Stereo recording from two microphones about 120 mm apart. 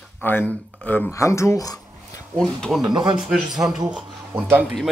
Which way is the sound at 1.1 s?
25° left (ahead or behind).